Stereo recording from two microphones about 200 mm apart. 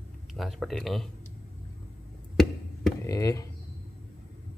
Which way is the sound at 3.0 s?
15° left (ahead or behind).